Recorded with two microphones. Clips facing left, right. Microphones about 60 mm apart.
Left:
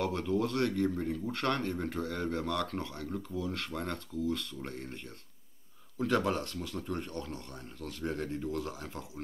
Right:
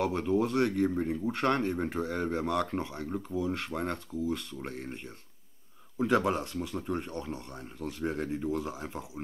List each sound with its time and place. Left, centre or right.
0.0 s speech: centre